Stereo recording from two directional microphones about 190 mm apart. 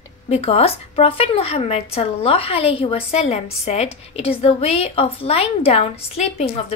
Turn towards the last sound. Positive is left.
turn(degrees=35)  # may be behind; listen again after turning